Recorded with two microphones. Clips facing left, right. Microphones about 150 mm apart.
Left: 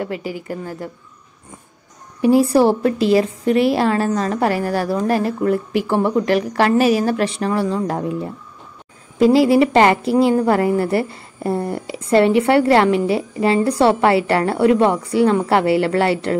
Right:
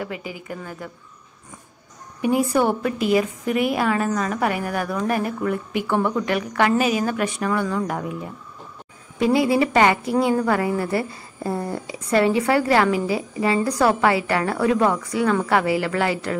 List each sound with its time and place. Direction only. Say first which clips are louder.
0.2 s speech: left 6 dB; 20° right (ahead or behind)
2.2 s a woman's voice: left 6 dB; 35° left (ahead or behind)